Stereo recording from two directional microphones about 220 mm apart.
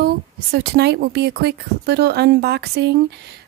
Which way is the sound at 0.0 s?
45° right (ahead or behind).